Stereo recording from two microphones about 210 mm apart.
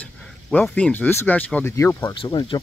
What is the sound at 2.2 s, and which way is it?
Speech, 20° left (ahead or behind).